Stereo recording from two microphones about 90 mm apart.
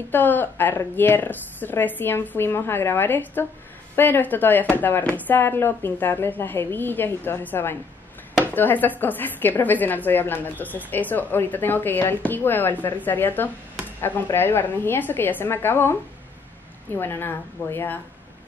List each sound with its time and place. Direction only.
0.1 s speech: 20° left (ahead or behind)